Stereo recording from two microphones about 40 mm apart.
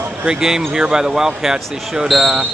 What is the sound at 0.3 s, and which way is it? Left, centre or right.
Speech, centre.